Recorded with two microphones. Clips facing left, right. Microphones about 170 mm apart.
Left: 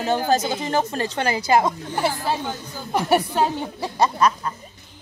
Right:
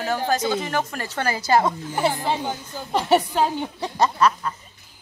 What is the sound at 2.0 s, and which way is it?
Speech, 20° right (ahead or behind).